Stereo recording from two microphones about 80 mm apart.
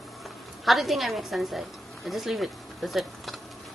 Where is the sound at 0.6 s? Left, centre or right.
Centre.